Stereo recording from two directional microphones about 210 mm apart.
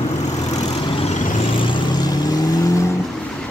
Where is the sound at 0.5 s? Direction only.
25° left (ahead or behind).